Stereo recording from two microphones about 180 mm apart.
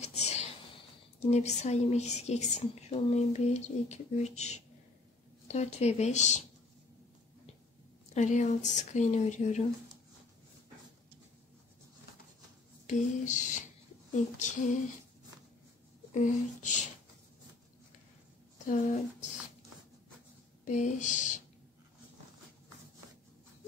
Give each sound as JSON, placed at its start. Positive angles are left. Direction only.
{"t": 0.0, "sound": "a sound", "side_deg": 40}
{"t": 1.2, "sound": "a woman's voice", "side_deg": 40}
{"t": 8.1, "sound": "a woman's voice", "side_deg": 40}
{"t": 12.8, "sound": "speech", "side_deg": 45}
{"t": 16.1, "sound": "speech", "side_deg": 45}
{"t": 18.7, "sound": "speech", "side_deg": 45}
{"t": 20.6, "sound": "speech", "side_deg": 40}